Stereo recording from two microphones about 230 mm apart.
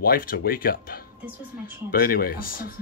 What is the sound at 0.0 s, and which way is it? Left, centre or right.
Speech, left.